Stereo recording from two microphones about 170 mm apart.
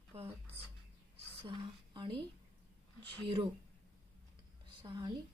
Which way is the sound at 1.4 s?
30° right (ahead or behind).